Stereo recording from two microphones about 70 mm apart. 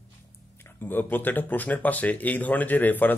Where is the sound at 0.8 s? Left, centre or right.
Left.